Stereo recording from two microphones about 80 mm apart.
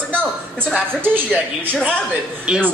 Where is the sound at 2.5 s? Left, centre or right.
Centre.